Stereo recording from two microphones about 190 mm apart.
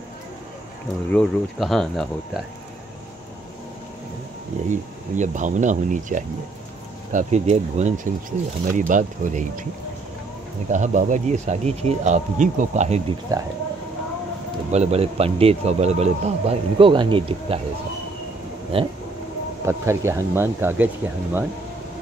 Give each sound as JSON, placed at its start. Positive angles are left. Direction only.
{"t": 1.1, "sound": "speech", "side_deg": 0}
{"t": 4.6, "sound": "speech", "side_deg": -40}
{"t": 10.7, "sound": "speech", "side_deg": -40}
{"t": 13.3, "sound": "speech", "side_deg": -15}
{"t": 14.7, "sound": "speech", "side_deg": -35}
{"t": 18.7, "sound": "speech", "side_deg": -30}
{"t": 19.6, "sound": "speech", "side_deg": -15}